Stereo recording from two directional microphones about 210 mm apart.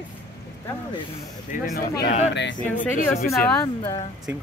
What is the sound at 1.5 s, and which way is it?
Speech, 35° left (ahead or behind).